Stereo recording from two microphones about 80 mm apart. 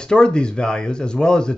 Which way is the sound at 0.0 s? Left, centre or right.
Centre.